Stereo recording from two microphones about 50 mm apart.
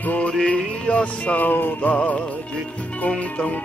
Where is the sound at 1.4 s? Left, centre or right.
Left.